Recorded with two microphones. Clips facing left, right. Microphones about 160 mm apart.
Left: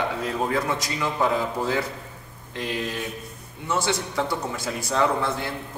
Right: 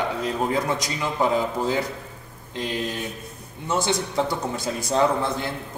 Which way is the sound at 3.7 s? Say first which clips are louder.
Right 2 dB; 20° right (ahead or behind).